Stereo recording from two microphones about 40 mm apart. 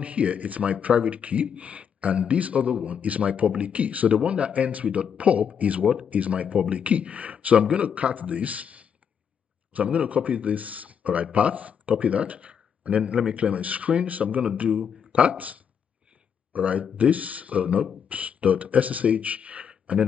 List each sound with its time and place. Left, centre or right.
0.0 s speech: right